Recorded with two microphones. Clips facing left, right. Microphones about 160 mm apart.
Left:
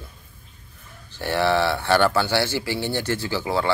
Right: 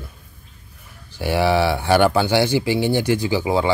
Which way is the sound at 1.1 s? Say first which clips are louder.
Right 3 dB; 10° right (ahead or behind).